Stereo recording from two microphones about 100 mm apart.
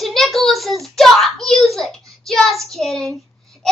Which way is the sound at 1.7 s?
Centre (ahead or behind).